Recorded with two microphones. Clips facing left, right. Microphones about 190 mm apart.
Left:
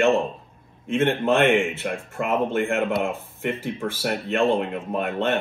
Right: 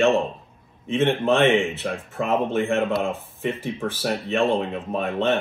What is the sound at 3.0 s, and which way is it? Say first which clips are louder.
Speech: right 1 dB; 15° left (ahead or behind).